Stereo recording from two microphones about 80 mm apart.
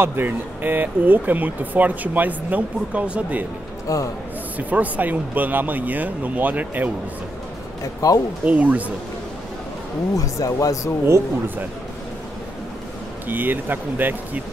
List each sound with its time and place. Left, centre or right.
0.0 s speech: right
3.8 s speech: left
4.6 s speech: centre
7.8 s speech: left
8.5 s speech: centre
10.1 s speech: left
11.1 s speech: right
13.3 s speech: right